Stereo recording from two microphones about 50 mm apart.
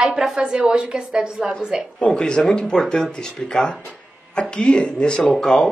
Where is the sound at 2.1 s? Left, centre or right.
Centre.